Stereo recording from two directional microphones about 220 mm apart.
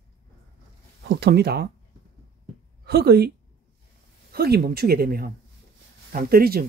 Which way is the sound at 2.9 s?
45° right (ahead or behind).